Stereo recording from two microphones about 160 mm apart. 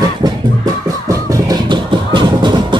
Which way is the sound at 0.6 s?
20° right (ahead or behind).